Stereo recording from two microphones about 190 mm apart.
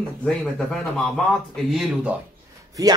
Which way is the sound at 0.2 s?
5° left (ahead or behind).